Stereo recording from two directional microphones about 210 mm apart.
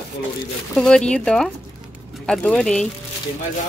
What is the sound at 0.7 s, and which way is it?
Speech, 5° left (ahead or behind).